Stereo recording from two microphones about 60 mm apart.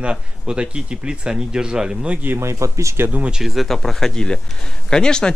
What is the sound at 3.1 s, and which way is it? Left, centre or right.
Speech, centre.